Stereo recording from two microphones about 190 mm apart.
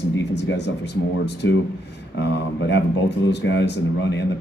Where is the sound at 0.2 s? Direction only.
65° left (ahead or behind).